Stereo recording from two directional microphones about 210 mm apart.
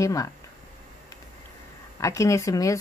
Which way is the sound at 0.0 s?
15° left (ahead or behind).